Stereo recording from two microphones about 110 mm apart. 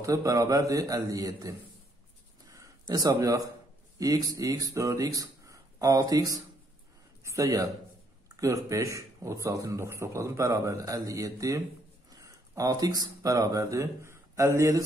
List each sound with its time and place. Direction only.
0.0 s a man's voice: 30° right (ahead or behind)
2.5 s a sound: 35° right (ahead or behind)
4.0 s a man's voice: 35° right (ahead or behind)